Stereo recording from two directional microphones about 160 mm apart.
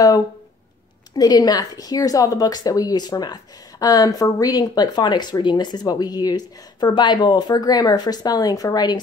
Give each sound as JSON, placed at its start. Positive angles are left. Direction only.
{"t": 1.1, "sound": "speech", "side_deg": 25}